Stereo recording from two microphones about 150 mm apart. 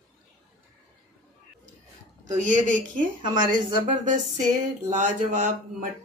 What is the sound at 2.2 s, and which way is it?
Speech, 55° right (ahead or behind).